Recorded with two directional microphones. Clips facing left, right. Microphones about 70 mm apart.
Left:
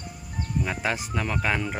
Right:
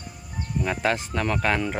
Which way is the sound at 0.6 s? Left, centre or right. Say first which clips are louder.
Right 7 dB; centre.